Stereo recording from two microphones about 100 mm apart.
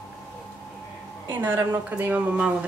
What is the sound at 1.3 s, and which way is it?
Speech, 20° right (ahead or behind).